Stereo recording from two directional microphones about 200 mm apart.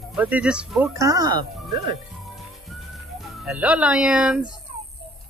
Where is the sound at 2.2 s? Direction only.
Centre (ahead or behind).